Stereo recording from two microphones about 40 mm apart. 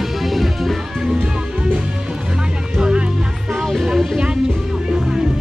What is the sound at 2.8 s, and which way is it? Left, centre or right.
Music, right.